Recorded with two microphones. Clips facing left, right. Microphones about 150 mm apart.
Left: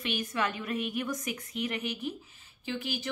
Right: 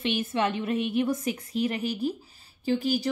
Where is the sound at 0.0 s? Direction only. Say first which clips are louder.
Right 5 dB; 25° right (ahead or behind).